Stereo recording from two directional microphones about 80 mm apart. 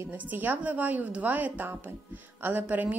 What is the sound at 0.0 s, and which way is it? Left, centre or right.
A woman's voice, right.